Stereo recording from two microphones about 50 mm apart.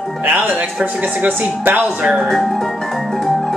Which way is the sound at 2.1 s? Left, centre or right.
Centre.